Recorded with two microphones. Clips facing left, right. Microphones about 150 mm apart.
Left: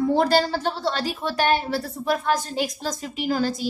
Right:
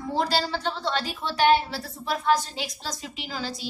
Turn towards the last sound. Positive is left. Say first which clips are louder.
# left 10 dB
turn(degrees=50)  # may be behind; listen again after turning